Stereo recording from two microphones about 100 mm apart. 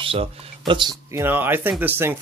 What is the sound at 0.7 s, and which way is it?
Speech, 50° right (ahead or behind).